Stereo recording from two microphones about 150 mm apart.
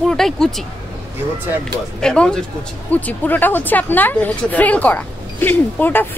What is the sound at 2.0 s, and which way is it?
A woman's voice, 5° left (ahead or behind).